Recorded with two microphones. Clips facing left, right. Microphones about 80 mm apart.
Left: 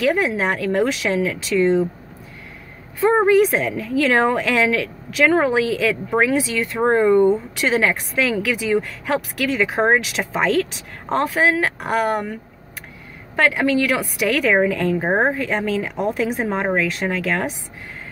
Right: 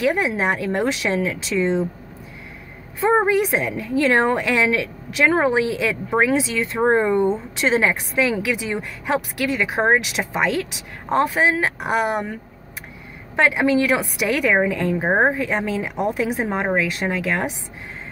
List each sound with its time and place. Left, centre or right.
0.0 s a woman's voice: centre
3.0 s a woman's voice: centre
6.8 s speech: centre
7.5 s a woman's voice: right; by 11.2 s centre
11.2 s speech: centre
13.4 s speech: centre